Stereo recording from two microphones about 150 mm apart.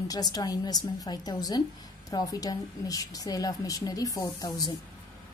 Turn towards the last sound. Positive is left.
turn(degrees=25)  # may be behind; listen again after turning